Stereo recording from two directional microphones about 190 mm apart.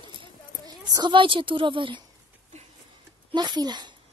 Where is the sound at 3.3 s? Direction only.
20° right (ahead or behind).